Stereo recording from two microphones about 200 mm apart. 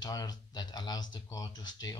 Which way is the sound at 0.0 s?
20° left (ahead or behind).